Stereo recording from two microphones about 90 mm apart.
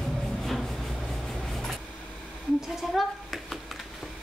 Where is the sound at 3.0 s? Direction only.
Centre (ahead or behind).